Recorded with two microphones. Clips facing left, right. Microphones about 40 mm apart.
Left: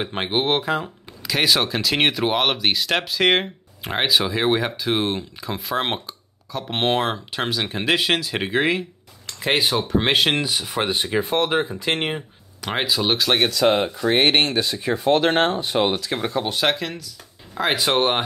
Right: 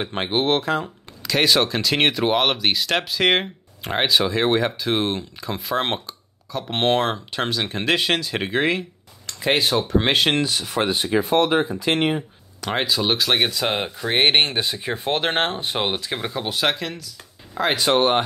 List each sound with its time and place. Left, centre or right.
0.0 s speech: centre
11.8 s speech: centre
12.6 s speech: centre
14.1 s speech: right; by 18.2 s centre